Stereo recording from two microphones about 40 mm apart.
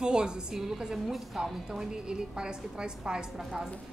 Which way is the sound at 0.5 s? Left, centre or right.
Centre.